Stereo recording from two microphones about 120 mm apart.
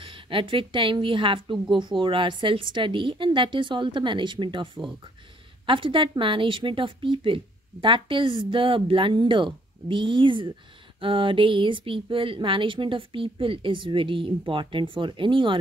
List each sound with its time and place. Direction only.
0.0 s a woman's voice: 45° right (ahead or behind)